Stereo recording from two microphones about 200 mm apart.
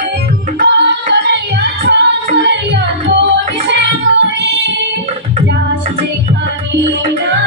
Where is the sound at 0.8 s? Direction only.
55° right (ahead or behind).